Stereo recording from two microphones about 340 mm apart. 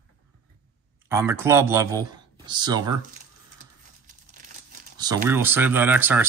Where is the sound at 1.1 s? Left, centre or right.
Centre.